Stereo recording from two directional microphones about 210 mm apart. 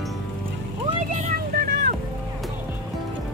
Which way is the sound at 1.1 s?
40° right (ahead or behind).